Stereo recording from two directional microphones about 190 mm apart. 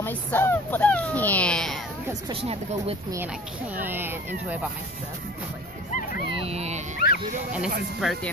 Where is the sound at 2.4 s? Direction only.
30° right (ahead or behind).